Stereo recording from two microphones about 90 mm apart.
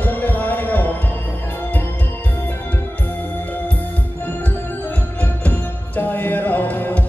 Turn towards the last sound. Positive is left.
turn(degrees=20)  # may be behind; listen again after turning